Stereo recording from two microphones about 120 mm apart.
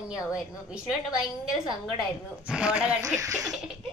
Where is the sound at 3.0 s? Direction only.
30° right (ahead or behind).